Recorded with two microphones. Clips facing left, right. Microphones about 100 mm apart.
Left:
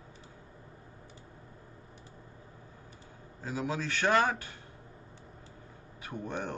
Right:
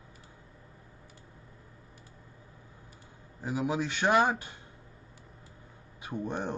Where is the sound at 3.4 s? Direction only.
15° right (ahead or behind).